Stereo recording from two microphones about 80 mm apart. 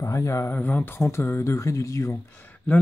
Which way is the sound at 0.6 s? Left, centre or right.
Left.